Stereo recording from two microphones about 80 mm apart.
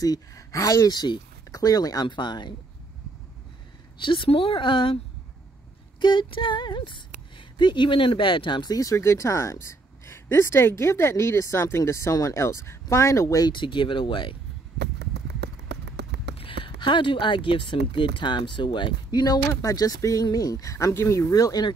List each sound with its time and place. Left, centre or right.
0.0 s speech: left
4.0 s speech: left
5.9 s a sound: left
8.7 s speech: left
13.4 s speech: left
16.4 s speech: left